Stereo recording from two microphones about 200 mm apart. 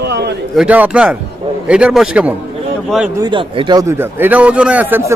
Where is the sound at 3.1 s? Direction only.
20° right (ahead or behind).